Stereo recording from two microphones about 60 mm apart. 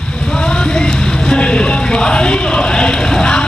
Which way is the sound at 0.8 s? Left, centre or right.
Centre.